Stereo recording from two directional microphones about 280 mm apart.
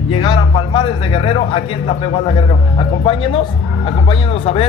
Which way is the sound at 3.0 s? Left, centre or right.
Centre.